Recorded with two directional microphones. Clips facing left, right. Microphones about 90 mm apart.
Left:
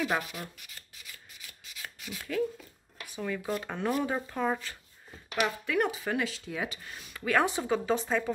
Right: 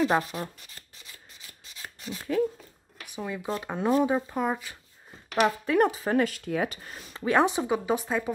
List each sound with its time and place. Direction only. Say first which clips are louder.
0.0 s speech: right 6 dB; 35° right (ahead or behind)
1.6 s a sound: right 2 dB; 35° right (ahead or behind)
3.1 s speech: right 1 dB; 15° right (ahead or behind)
5.3 s speech: right 6 dB; 40° right (ahead or behind)
7.2 s speech: right 4 dB; 20° right (ahead or behind)